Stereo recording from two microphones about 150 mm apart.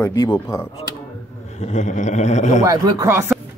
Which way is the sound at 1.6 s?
50° left (ahead or behind).